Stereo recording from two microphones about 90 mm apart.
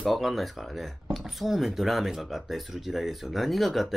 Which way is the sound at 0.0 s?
Centre (ahead or behind).